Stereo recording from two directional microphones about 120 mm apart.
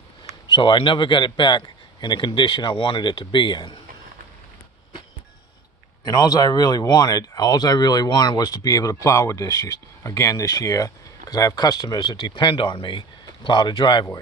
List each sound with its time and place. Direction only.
0.5 s speech: 40° left (ahead or behind)
6.0 s speech: 35° left (ahead or behind)